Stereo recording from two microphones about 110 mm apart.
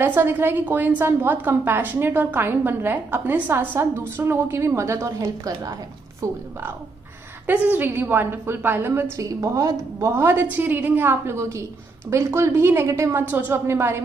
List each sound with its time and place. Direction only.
0.0 s a woman's voice: 20° right (ahead or behind)
7.4 s a woman's voice: 15° right (ahead or behind)
9.1 s a woman's voice: 30° right (ahead or behind)